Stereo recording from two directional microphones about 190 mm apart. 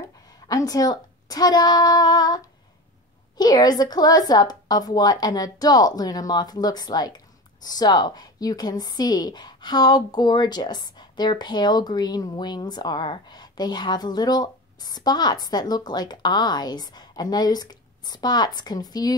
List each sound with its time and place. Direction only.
0.0 s a woman's voice: 20° left (ahead or behind)